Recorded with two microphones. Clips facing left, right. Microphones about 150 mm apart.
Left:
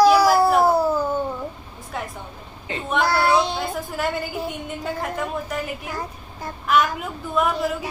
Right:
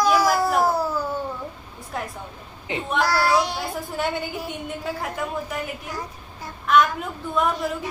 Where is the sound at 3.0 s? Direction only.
25° left (ahead or behind).